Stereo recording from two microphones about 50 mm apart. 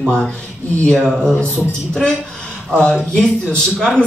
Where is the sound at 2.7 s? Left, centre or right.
Left.